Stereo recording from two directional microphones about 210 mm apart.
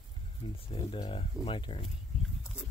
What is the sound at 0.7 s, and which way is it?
Speech, 25° left (ahead or behind).